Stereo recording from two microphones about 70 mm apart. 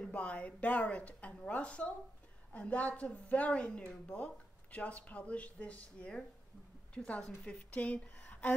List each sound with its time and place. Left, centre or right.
0.0 s a woman's voice: centre